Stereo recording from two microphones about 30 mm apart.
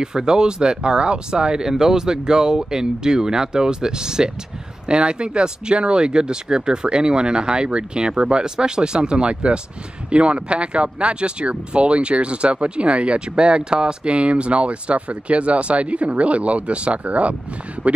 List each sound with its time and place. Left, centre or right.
0.0 s speech: right
1.7 s speech: centre
4.8 s speech: right